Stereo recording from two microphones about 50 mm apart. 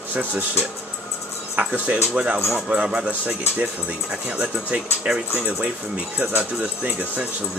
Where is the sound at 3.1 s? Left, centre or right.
Right.